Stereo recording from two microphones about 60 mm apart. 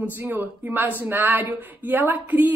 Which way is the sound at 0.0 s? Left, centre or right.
Right.